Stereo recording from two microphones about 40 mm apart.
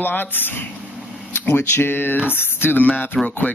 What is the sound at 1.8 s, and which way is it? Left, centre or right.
Speech, left.